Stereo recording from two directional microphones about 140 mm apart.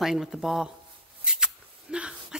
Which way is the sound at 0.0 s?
Centre (ahead or behind).